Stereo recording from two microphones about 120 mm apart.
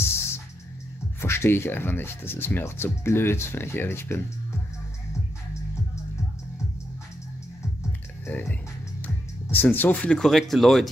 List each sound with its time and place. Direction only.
1.2 s speech: 20° left (ahead or behind)
8.3 s speech: 15° left (ahead or behind)